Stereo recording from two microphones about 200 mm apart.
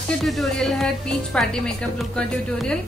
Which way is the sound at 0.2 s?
Centre (ahead or behind).